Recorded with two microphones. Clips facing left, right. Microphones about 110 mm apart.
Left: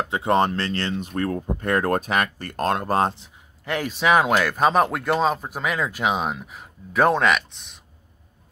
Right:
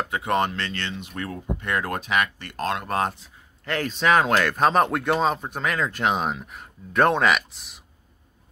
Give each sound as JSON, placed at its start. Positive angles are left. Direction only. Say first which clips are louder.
{"t": 0.1, "sound": "speech", "louder": "left 5 dB", "side_deg": 30}
{"t": 3.6, "sound": "speech", "louder": "left 1 dB", "side_deg": 10}